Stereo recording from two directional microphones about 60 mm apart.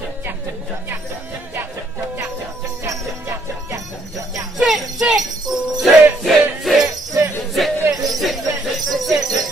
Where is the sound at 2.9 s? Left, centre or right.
Right.